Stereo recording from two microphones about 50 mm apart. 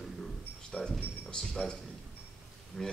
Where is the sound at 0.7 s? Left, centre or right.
Centre.